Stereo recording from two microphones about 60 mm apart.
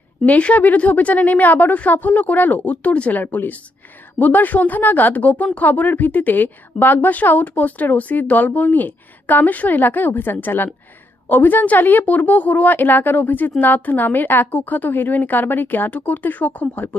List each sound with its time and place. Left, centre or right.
0.2 s speech: left